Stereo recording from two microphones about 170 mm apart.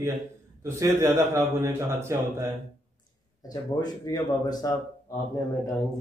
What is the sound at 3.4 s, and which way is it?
Speech, 20° left (ahead or behind).